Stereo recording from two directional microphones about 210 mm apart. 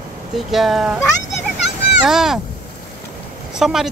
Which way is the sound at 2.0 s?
Centre (ahead or behind).